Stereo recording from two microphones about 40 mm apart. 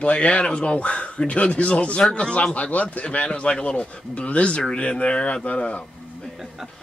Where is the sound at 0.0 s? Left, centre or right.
Left.